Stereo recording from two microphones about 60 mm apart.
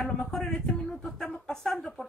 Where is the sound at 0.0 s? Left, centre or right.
Centre.